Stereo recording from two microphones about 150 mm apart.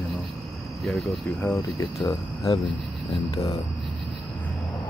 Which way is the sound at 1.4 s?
20° left (ahead or behind).